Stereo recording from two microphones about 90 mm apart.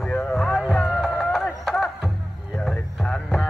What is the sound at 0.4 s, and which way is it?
Music, centre (ahead or behind).